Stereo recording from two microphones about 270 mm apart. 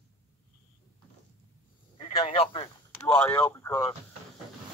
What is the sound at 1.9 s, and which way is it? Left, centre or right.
Telephone, centre.